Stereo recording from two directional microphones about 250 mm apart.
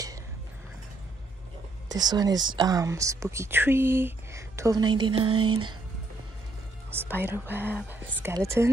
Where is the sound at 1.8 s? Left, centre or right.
Centre.